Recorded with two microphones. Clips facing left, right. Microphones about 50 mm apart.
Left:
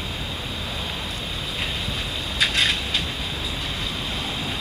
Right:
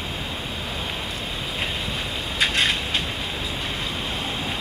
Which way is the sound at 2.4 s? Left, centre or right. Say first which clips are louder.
Even; centre.